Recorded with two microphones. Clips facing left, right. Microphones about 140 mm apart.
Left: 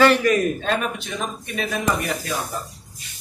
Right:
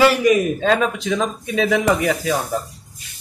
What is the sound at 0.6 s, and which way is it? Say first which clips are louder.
A man's voice: right 6 dB; 90° right.